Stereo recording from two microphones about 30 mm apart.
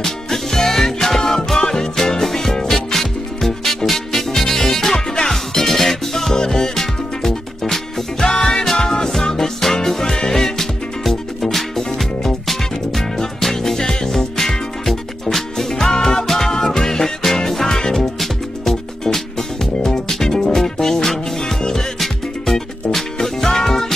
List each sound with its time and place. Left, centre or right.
0.0 s music: centre
4.3 s music: centre
6.3 s music: left
6.7 s music: centre
13.4 s music: centre
19.1 s music: centre